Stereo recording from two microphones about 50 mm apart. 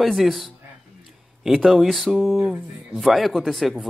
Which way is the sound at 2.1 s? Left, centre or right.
Right.